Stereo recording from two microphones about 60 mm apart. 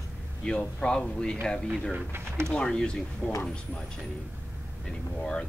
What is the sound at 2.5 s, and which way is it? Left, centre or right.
Speech, centre.